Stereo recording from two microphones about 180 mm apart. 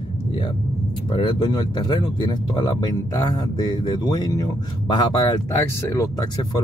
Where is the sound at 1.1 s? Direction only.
25° left (ahead or behind).